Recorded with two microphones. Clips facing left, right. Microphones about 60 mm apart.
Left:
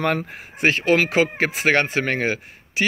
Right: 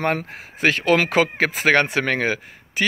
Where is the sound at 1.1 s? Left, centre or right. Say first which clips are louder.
Right 1 dB; right.